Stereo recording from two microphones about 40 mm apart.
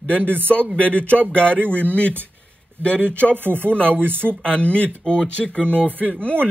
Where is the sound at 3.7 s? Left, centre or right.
Left.